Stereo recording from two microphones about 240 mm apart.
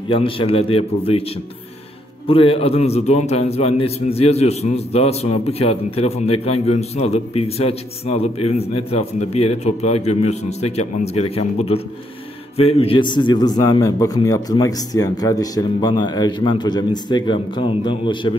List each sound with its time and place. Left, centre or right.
0.1 s a man's voice: left
2.2 s a man's voice: left